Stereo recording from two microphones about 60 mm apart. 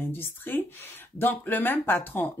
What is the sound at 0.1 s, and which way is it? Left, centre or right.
Speech, left.